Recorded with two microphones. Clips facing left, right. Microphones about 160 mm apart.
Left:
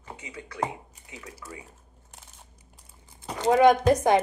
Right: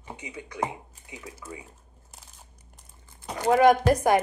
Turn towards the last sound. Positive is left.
turn(degrees=25)  # may be behind; listen again after turning